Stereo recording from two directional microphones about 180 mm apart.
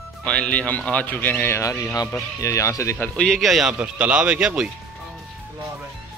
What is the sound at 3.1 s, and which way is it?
Speech, centre (ahead or behind).